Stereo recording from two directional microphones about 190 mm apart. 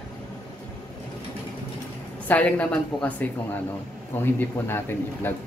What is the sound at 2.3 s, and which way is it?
Speech, 5° left (ahead or behind).